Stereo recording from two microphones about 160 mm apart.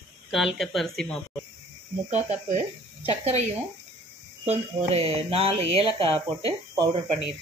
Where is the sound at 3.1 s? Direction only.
45° right (ahead or behind).